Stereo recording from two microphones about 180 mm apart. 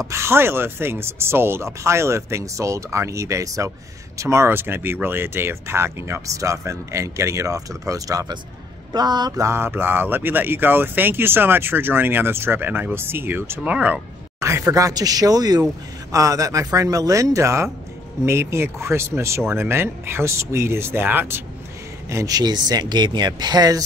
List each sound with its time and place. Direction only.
0.0 s speech: 15° right (ahead or behind)